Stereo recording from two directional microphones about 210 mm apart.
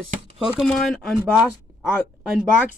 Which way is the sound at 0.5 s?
5° left (ahead or behind).